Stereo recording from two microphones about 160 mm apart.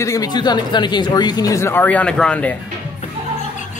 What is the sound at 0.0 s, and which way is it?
Speech, 20° left (ahead or behind).